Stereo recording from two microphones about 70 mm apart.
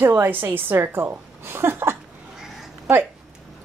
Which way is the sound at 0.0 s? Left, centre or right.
Right.